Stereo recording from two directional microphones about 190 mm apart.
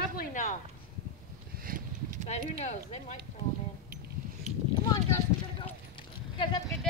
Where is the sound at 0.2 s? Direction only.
40° left (ahead or behind).